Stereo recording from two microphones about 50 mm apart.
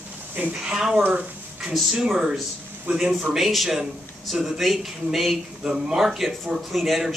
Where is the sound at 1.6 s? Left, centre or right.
Centre.